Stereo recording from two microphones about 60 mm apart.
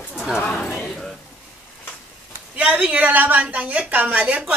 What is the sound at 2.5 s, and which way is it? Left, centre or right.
A woman's voice, right.